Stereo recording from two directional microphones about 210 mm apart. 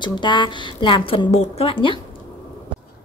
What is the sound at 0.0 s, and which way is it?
A woman's voice, 20° left (ahead or behind).